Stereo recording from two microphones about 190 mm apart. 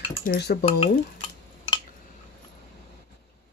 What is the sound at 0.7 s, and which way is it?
Stir, 25° left (ahead or behind).